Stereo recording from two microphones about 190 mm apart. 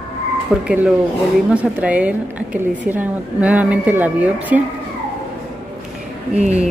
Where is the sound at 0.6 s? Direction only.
5° right (ahead or behind).